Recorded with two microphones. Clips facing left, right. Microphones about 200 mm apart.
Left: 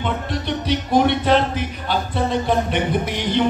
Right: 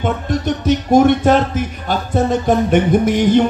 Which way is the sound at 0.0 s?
45° right (ahead or behind).